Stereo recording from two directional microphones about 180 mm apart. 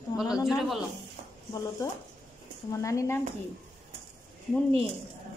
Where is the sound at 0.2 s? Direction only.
5° right (ahead or behind).